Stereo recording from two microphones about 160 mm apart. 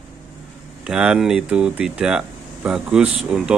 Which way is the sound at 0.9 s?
5° right (ahead or behind).